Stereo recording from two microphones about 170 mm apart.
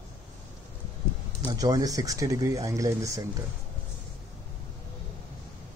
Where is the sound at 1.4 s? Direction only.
20° right (ahead or behind).